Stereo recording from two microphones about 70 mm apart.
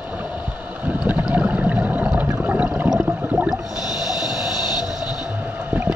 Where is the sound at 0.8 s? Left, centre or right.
Right.